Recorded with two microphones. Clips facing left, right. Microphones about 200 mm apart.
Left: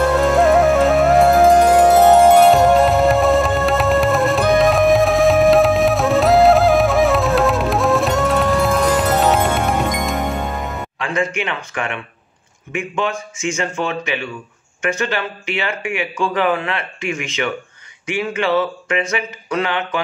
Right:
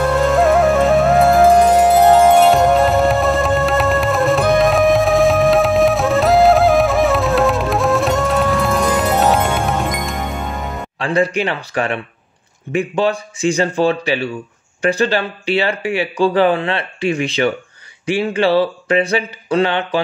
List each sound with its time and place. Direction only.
0.3 s music: centre (ahead or behind)
11.0 s speech: 35° right (ahead or behind)